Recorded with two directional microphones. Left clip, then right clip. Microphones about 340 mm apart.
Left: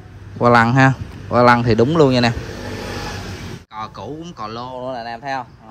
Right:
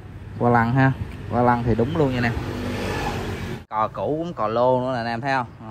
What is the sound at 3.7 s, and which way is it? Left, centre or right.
Speech, centre.